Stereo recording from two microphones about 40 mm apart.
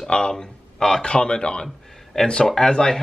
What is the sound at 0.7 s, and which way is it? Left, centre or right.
Speech, centre.